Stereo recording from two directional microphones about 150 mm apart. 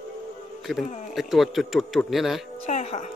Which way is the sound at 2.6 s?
45° left (ahead or behind).